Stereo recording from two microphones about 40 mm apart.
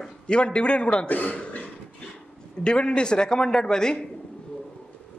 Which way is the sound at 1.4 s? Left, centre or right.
Left.